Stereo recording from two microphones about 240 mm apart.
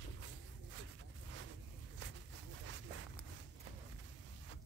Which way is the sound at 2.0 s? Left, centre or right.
Right.